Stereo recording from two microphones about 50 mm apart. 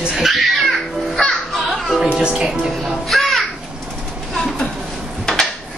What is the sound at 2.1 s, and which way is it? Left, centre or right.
Music, centre.